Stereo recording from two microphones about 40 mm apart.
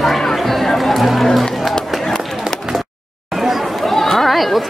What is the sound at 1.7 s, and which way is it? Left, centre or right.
Run, centre.